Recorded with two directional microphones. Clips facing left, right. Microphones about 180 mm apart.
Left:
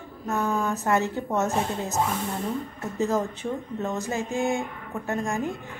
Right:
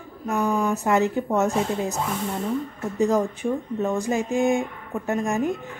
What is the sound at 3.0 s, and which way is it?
A woman's voice, 15° right (ahead or behind).